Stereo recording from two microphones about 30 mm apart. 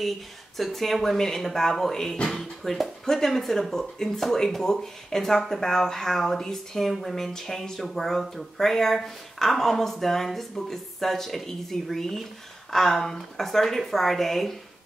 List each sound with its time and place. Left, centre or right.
0.6 s speech: centre